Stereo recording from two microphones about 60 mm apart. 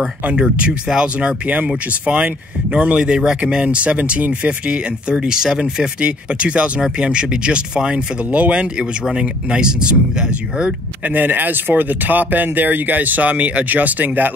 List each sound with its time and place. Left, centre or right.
0.2 s speech: right
11.1 s speech: right